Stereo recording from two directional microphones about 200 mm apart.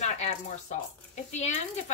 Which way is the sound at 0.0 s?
35° left (ahead or behind).